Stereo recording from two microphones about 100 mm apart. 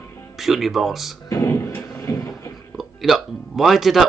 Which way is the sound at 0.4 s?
Centre (ahead or behind).